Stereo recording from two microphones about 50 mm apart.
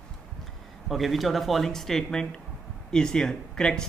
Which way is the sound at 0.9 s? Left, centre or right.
Centre.